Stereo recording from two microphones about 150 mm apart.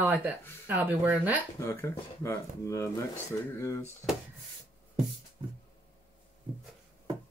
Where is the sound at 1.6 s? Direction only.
20° left (ahead or behind).